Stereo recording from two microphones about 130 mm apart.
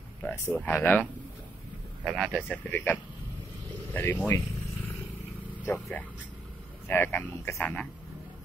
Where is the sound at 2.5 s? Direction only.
15° left (ahead or behind).